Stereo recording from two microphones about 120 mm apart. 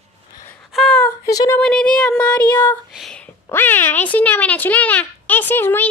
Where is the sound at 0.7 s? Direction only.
Centre (ahead or behind).